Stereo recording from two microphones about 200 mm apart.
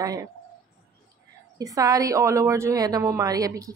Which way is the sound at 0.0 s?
15° right (ahead or behind).